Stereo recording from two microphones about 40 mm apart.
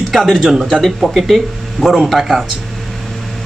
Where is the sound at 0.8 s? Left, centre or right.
Centre.